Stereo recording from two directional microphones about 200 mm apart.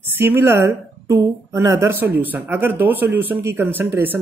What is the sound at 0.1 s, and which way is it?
Speech, 10° right (ahead or behind).